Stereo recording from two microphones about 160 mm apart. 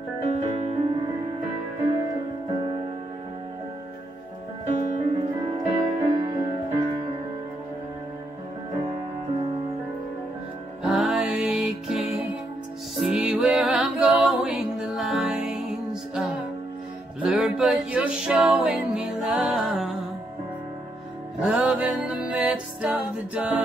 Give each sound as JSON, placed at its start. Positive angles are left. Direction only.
{"t": 0.2, "sound": "music", "side_deg": -45}
{"t": 2.5, "sound": "music", "side_deg": -30}
{"t": 4.6, "sound": "music", "side_deg": -45}
{"t": 10.8, "sound": "music", "side_deg": -5}
{"t": 21.4, "sound": "music", "side_deg": -5}